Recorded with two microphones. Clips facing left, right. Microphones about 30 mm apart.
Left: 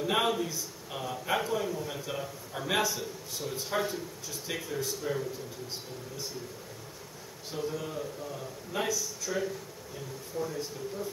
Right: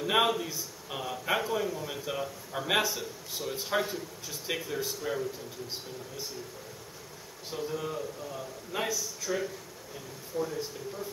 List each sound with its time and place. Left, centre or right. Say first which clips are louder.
0.0 s a man's voice: right 2 dB; centre
7.5 s a man's voice: right 1 dB; centre